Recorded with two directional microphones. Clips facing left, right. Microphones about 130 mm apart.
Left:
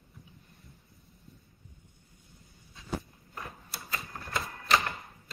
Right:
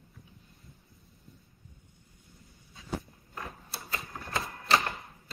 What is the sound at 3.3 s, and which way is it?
Typewriter, centre (ahead or behind).